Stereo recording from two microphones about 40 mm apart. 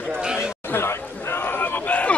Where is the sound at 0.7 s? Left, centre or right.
Left.